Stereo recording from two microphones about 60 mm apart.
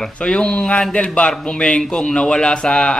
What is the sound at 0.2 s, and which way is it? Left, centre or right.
Speech, centre.